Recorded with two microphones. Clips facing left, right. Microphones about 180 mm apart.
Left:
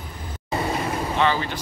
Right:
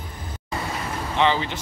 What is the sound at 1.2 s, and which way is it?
Speech, 20° right (ahead or behind).